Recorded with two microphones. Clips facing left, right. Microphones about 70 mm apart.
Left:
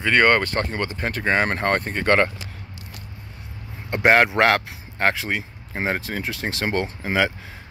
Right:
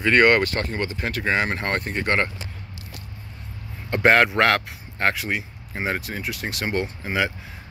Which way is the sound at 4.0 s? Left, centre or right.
Left.